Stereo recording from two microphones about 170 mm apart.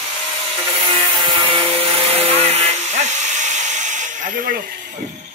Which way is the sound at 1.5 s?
35° right (ahead or behind).